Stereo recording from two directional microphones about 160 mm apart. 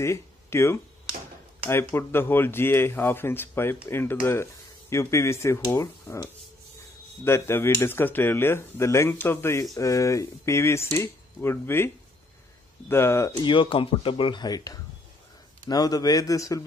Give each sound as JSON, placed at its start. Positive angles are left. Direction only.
{"t": 0.0, "sound": "speech", "side_deg": 15}
{"t": 13.4, "sound": "speech", "side_deg": 30}